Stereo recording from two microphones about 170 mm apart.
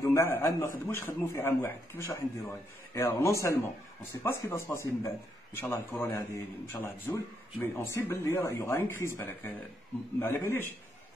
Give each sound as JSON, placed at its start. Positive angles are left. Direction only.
{"t": 0.0, "sound": "a man's voice", "side_deg": 15}